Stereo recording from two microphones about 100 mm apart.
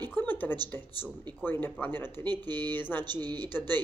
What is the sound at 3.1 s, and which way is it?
Speech, 45° right (ahead or behind).